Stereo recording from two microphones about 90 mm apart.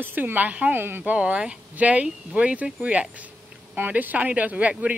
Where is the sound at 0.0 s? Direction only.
20° right (ahead or behind).